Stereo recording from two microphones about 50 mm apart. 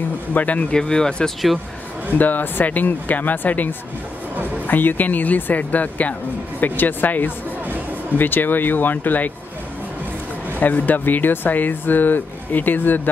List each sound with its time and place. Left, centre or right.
0.3 s speech: left
0.7 s speech: centre
2.1 s speech: left
7.6 s music: right
8.2 s speech: left
10.6 s speech: left